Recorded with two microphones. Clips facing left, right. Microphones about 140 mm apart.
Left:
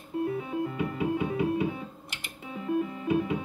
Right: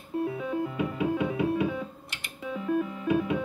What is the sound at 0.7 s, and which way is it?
Music, 60° right (ahead or behind).